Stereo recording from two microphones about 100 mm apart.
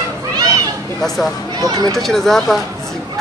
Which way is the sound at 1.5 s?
40° right (ahead or behind).